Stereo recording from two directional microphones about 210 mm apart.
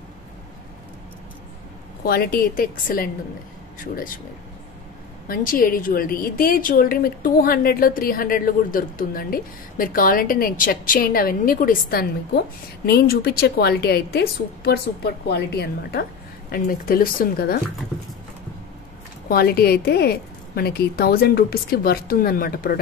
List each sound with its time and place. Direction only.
2.0 s a woman's voice: 45° left (ahead or behind)
5.3 s a woman's voice: 40° left (ahead or behind)
19.2 s a woman's voice: 45° left (ahead or behind)